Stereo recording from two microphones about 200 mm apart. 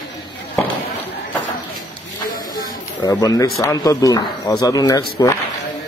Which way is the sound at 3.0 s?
15° left (ahead or behind).